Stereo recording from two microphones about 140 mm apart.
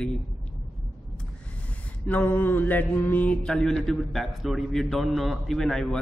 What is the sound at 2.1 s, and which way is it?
Mantra, 10° left (ahead or behind).